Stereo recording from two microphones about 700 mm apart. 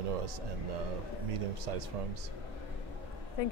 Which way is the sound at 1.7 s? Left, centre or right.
Right.